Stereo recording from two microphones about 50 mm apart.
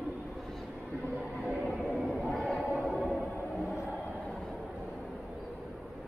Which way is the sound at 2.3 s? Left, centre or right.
Centre.